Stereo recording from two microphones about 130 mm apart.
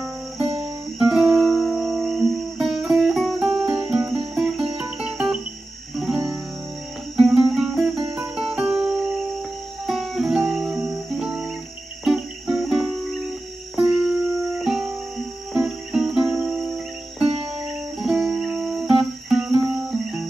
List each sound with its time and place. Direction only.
0.4 s music: 50° right (ahead or behind)
0.9 s music: 5° right (ahead or behind)
4.7 s cricket: 5° right (ahead or behind)
5.9 s music: centre (ahead or behind)
7.2 s cricket: centre (ahead or behind)
8.4 s music: 5° right (ahead or behind)
12.0 s cricket: 5° right (ahead or behind)
13.7 s music: 5° right (ahead or behind)